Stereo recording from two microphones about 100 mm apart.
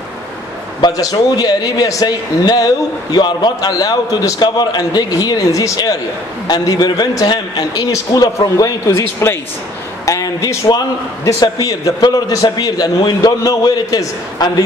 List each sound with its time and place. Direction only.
0.7 s a man's voice: 45° left (ahead or behind)
7.9 s a man's voice: 35° left (ahead or behind)